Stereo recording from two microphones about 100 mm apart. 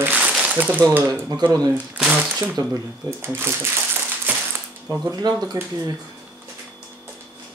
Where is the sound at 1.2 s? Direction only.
40° right (ahead or behind).